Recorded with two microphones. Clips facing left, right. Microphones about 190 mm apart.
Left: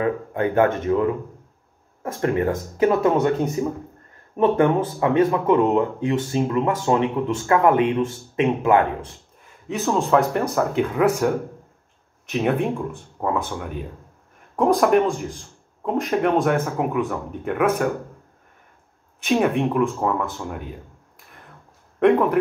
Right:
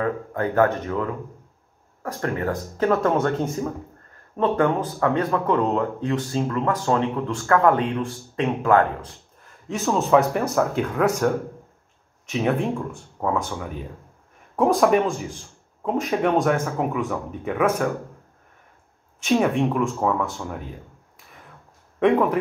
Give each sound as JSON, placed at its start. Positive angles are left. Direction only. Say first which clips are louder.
{"t": 0.0, "sound": "speech", "louder": "left 2 dB", "side_deg": 20}
{"t": 9.7, "sound": "speech", "louder": "even", "side_deg": 0}
{"t": 19.2, "sound": "speech", "louder": "even", "side_deg": 0}
{"t": 22.0, "sound": "speech", "louder": "left 2 dB", "side_deg": 0}